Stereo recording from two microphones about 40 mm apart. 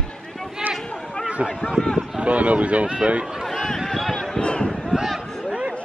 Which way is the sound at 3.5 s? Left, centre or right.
Centre.